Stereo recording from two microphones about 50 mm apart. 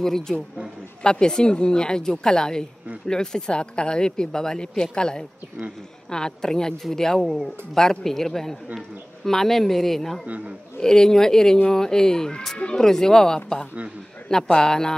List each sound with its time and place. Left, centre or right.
0.0 s speech: centre
10.2 s a man's voice: right
10.8 s speech: centre